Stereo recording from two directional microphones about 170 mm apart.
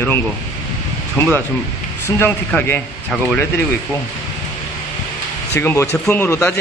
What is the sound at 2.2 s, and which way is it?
Speech, 10° left (ahead or behind).